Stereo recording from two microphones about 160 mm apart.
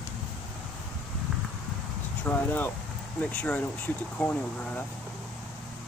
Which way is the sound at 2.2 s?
10° left (ahead or behind).